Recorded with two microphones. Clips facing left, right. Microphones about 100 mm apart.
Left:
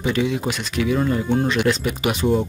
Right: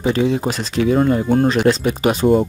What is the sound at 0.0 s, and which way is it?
Speech, 35° right (ahead or behind).